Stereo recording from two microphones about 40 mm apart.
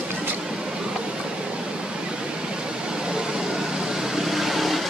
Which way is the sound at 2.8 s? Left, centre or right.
Centre.